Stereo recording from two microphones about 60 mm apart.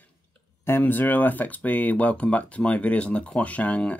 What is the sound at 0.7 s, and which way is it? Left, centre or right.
Speech, left.